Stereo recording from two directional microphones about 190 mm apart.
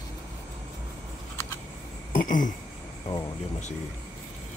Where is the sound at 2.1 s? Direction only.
45° left (ahead or behind).